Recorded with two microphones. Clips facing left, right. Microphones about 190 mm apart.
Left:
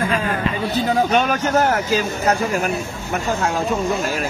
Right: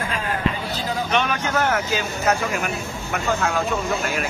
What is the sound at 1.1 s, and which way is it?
Speech, 40° left (ahead or behind).